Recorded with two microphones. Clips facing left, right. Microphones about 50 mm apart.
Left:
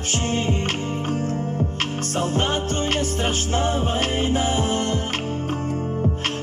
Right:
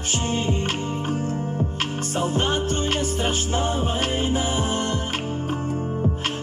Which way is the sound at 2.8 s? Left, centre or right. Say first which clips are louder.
Left 1 dB; left.